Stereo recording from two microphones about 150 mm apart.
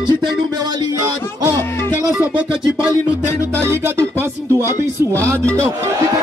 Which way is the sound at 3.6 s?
15° right (ahead or behind).